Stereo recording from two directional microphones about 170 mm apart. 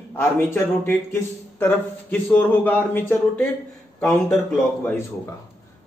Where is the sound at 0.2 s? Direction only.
15° left (ahead or behind).